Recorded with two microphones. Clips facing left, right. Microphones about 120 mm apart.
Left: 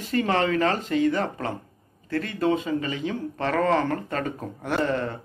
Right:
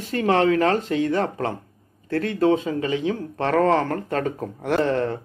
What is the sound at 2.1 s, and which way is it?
Speech, 60° right (ahead or behind).